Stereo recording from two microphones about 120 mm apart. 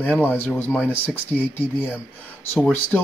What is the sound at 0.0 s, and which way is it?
Speech, 15° left (ahead or behind).